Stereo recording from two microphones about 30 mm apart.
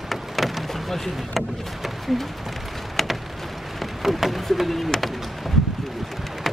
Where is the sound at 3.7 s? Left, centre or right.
Centre.